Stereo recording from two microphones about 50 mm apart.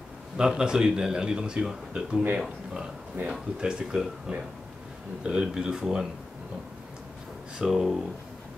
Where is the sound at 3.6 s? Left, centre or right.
Centre.